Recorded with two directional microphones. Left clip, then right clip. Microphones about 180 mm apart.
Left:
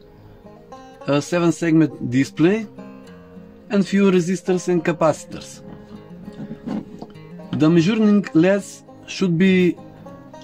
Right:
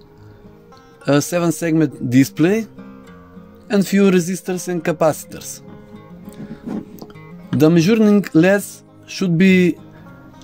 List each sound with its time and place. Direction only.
1.0 s speech: 50° right (ahead or behind)
7.5 s speech: 50° right (ahead or behind)